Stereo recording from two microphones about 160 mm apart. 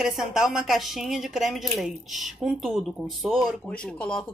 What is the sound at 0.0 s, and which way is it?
A woman's voice, 5° right (ahead or behind).